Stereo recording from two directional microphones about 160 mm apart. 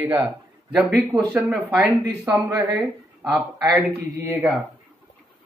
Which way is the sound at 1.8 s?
10° right (ahead or behind).